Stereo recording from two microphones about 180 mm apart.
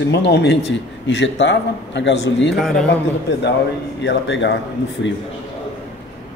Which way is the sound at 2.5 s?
Centre (ahead or behind).